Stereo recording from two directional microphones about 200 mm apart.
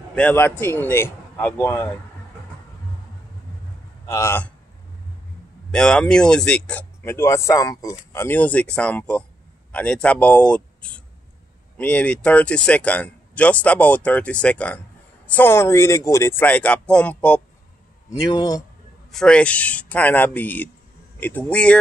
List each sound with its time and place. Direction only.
0.1 s speech: 5° left (ahead or behind)
4.1 s speech: 10° left (ahead or behind)
5.7 s a man's voice: 5° left (ahead or behind)
18.1 s a man's voice: 20° left (ahead or behind)
19.1 s speech: 5° left (ahead or behind)